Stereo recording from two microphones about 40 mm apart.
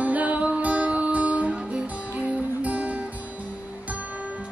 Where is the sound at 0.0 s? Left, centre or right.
Right.